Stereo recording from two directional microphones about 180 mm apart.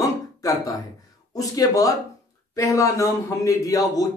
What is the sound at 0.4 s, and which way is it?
Speech, 20° left (ahead or behind).